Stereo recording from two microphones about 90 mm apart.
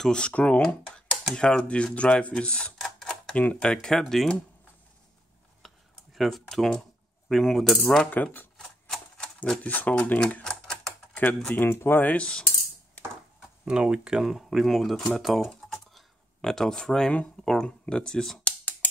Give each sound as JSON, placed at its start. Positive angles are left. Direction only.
{"t": 0.0, "sound": "speech", "side_deg": 10}
{"t": 4.0, "sound": "coin", "side_deg": 5}
{"t": 5.6, "sound": "computer keyboard", "side_deg": 0}
{"t": 6.1, "sound": "coin", "side_deg": 0}
{"t": 8.0, "sound": "speech", "side_deg": 20}
{"t": 8.5, "sound": "typewriter", "side_deg": 10}
{"t": 9.6, "sound": "speech", "side_deg": 20}
{"t": 10.4, "sound": "typewriter", "side_deg": 5}
{"t": 11.1, "sound": "speech", "side_deg": 20}
{"t": 13.7, "sound": "speech", "side_deg": -10}